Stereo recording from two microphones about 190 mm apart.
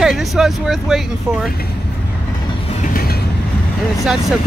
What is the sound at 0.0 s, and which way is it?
Speech, centre (ahead or behind).